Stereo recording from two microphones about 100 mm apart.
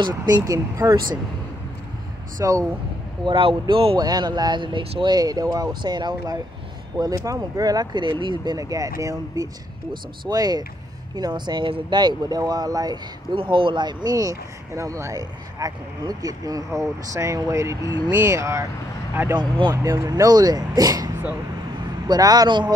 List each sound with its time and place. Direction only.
0.1 s speech: 30° right (ahead or behind)
2.4 s speech: 30° right (ahead or behind)
3.3 s speech: 55° right (ahead or behind)
3.9 s speech: 40° right (ahead or behind)
8.5 s speech: 35° right (ahead or behind)
10.2 s speech: 40° right (ahead or behind)
13.3 s speech: 60° right (ahead or behind); by 18.7 s 30° right (ahead or behind)
19.7 s speech: 30° right (ahead or behind)